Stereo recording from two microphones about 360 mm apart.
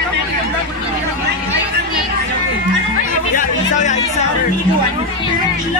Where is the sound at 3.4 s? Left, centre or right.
Centre.